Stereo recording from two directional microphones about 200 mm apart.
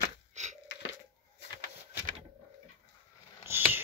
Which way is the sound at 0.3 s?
35° right (ahead or behind).